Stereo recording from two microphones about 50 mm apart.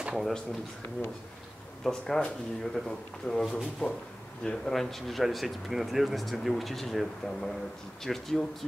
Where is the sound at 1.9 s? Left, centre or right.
Centre.